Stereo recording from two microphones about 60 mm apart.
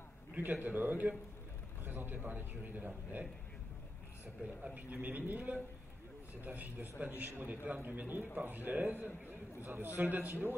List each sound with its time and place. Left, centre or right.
0.4 s a man's voice: right
4.7 s a man's voice: right